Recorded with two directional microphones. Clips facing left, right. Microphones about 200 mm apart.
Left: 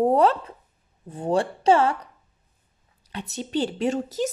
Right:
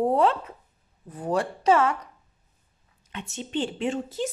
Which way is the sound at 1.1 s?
30° left (ahead or behind).